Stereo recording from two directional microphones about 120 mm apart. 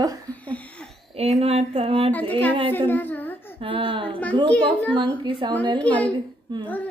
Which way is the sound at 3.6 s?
50° right (ahead or behind).